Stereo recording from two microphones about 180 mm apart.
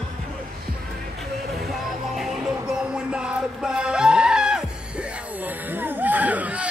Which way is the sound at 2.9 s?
5° right (ahead or behind).